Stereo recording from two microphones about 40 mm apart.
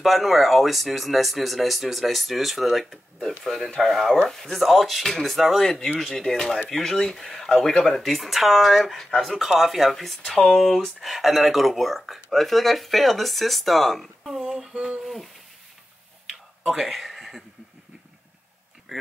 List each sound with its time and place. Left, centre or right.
0.0 s speech: centre
14.7 s speech: right
16.6 s speech: centre
18.9 s speech: centre